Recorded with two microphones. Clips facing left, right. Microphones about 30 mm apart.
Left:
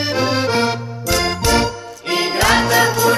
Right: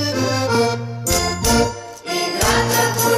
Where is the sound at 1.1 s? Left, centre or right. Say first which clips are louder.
Left 1 dB; left.